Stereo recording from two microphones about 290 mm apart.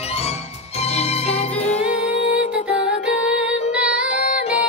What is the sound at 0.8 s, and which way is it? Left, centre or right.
Music, left.